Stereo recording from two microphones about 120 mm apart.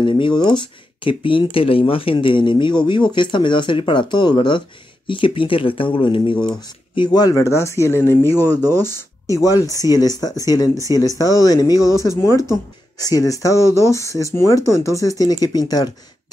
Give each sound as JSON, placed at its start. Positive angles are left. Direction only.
{"t": 0.0, "sound": "speech", "side_deg": 45}
{"t": 6.3, "sound": "speech", "side_deg": 5}
{"t": 7.0, "sound": "speech", "side_deg": 35}